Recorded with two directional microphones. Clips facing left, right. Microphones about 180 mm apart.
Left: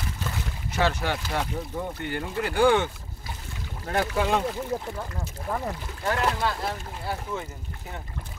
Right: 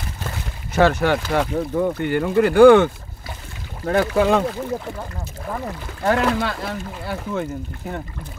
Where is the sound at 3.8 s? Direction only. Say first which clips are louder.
Right 8 dB; 90° right.